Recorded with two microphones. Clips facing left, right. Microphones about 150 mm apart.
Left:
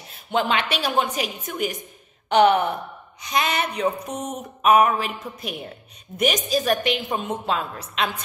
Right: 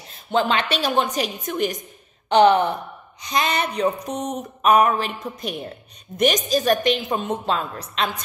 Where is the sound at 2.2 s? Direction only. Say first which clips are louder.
Right 2 dB; 30° right (ahead or behind).